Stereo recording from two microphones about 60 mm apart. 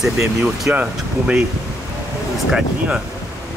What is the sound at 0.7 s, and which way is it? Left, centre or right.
Speech, right.